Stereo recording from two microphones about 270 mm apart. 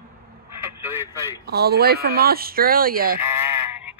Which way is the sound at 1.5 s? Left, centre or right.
Right.